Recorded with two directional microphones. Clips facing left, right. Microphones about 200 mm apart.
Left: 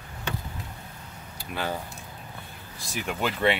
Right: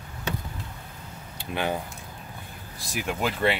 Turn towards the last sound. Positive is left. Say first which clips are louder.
# even
turn(degrees=-5)  # may be behind; listen again after turning